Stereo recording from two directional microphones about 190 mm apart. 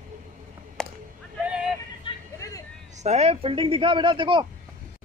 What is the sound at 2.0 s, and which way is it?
Vehicle, 20° left (ahead or behind).